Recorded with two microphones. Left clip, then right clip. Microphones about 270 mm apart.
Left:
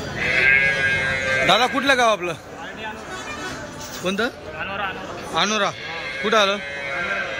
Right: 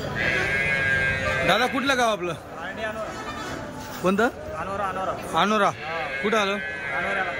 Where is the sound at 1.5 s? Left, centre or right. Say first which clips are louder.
Left 5 dB; centre.